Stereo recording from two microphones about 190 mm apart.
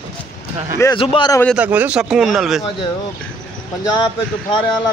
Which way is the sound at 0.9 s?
30° left (ahead or behind).